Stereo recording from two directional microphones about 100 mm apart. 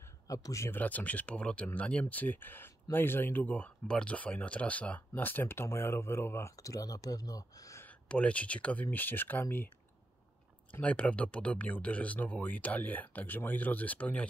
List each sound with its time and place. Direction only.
0.0 s a sound: 35° left (ahead or behind)
0.7 s speech: 15° left (ahead or behind); by 7.8 s 35° left (ahead or behind)
7.8 s speech: 15° left (ahead or behind)
10.7 s speech: 10° left (ahead or behind)